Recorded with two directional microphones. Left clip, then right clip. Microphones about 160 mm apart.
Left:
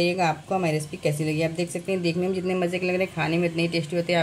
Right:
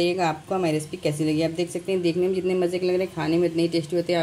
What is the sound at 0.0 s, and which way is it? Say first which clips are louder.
Speech: even; 10° right (ahead or behind).